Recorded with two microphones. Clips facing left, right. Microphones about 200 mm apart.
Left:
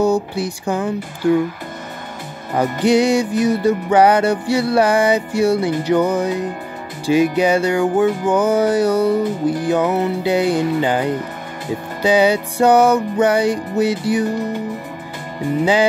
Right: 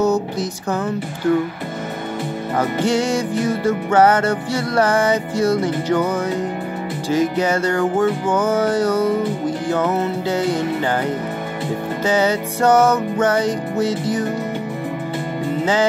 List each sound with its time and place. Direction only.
0.0 s speech: 15° left (ahead or behind)
1.2 s music: 15° left (ahead or behind)
2.5 s music: 15° left (ahead or behind)
12.0 s music: 15° left (ahead or behind)